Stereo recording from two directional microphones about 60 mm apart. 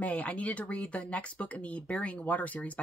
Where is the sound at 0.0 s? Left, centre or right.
Left.